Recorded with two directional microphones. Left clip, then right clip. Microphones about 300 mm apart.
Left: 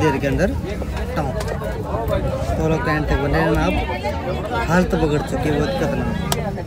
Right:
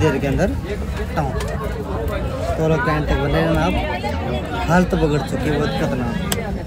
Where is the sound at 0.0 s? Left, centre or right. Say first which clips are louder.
Even; centre.